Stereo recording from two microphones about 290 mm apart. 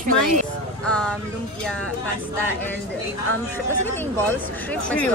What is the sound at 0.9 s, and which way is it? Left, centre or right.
Speech, centre.